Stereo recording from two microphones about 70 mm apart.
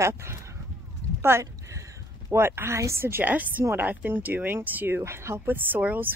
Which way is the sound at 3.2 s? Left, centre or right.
Right.